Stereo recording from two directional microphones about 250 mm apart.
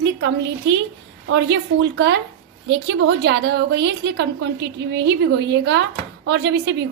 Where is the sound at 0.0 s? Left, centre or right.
Right.